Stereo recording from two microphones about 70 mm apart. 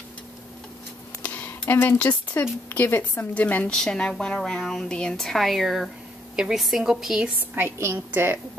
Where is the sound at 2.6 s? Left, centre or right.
Left.